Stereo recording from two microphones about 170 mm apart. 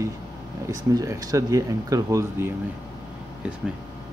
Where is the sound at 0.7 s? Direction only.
20° right (ahead or behind).